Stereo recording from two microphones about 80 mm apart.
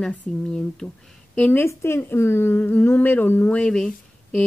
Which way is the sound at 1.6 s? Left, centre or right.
Left.